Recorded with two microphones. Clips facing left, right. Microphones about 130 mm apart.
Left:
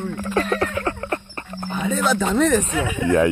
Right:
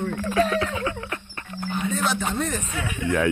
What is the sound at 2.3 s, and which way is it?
Speech, 90° left.